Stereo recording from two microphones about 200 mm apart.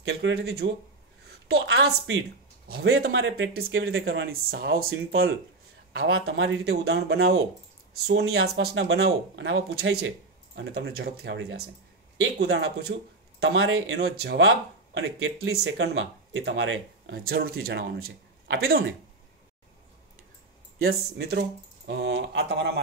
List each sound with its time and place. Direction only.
0.2 s speech: 55° right (ahead or behind); by 6.9 s 75° right (ahead or behind)
8.1 s speech: 75° right (ahead or behind)
14.0 s speech: 55° right (ahead or behind)
15.0 s speech: 70° right (ahead or behind); by 18.6 s 50° right (ahead or behind)
20.8 s speech: 55° right (ahead or behind)